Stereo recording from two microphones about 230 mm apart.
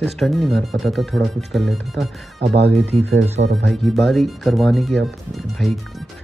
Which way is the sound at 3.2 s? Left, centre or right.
Right.